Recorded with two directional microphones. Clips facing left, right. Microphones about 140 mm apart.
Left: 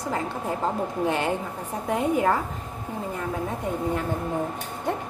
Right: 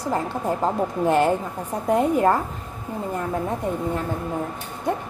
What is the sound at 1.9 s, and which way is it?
Speech, 40° right (ahead or behind).